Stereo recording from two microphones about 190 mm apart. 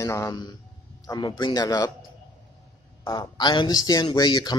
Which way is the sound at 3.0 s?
25° left (ahead or behind).